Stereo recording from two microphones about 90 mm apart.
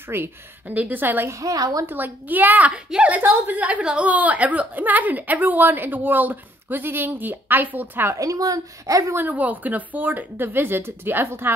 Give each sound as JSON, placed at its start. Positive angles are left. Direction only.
{"t": 0.1, "sound": "a woman's voice", "side_deg": -20}
{"t": 1.3, "sound": "speech", "side_deg": -40}
{"t": 1.9, "sound": "a woman's voice", "side_deg": -20}
{"t": 8.2, "sound": "speech", "side_deg": -40}
{"t": 9.1, "sound": "a woman's voice", "side_deg": -20}